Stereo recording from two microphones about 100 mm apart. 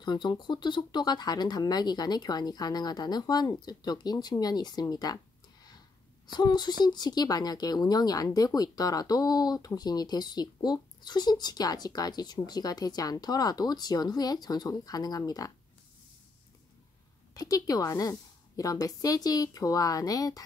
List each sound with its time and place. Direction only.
0.0 s speech: 45° left (ahead or behind)
17.3 s speech: 35° left (ahead or behind)